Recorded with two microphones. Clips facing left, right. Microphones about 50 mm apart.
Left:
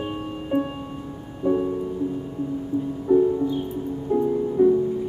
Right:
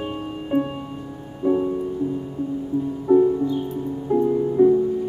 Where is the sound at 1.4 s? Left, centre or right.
Centre.